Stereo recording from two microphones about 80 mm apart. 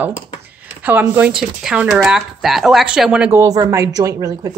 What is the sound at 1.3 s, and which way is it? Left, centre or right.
Speech, centre.